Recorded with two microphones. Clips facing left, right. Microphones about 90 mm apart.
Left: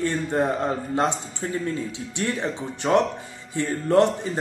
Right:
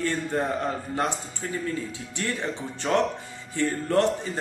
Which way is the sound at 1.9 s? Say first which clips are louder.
Left 3 dB; 20° left (ahead or behind).